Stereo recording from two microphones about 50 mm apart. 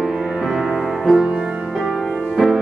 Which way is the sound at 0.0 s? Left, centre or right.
Centre.